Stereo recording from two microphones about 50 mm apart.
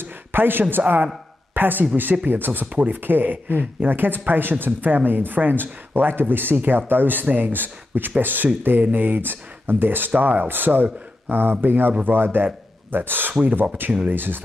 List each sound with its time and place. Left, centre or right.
0.0 s a man's voice: right
14.1 s speech: right